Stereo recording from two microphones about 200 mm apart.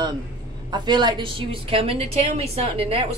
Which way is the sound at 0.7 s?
20° right (ahead or behind).